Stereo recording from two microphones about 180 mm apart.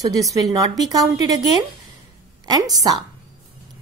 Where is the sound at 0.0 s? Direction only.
20° right (ahead or behind).